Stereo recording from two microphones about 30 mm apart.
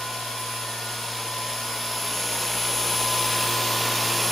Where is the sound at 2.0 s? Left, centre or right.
Centre.